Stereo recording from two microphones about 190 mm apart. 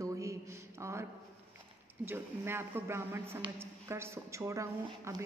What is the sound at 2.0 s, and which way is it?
A woman's voice, 10° right (ahead or behind).